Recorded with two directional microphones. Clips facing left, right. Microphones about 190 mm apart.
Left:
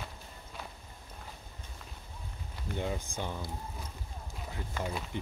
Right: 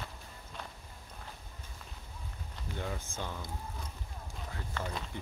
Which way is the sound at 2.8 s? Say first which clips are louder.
Left 4 dB; 15° left (ahead or behind).